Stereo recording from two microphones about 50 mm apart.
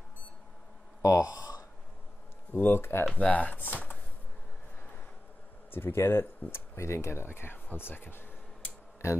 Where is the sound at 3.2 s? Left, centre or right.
Left.